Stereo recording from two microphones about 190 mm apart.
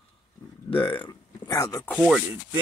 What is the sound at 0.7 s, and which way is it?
Speech, 25° left (ahead or behind).